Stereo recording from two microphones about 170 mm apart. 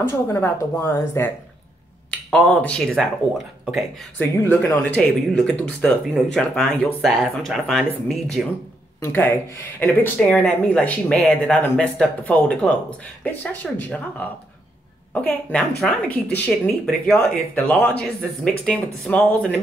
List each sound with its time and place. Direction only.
0.0 s speech: 15° left (ahead or behind)
4.2 s speech: 10° left (ahead or behind)
9.0 s speech: 10° left (ahead or behind)
16.1 s speech: 75° left (ahead or behind)
16.8 s speech: 5° left (ahead or behind)